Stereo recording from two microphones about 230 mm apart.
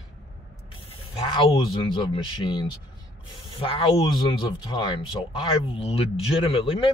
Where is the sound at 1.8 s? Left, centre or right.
Left.